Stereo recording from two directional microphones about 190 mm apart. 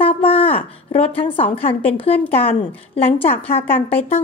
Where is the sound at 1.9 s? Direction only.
30° left (ahead or behind).